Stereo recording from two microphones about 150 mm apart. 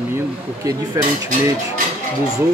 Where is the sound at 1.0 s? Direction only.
20° right (ahead or behind).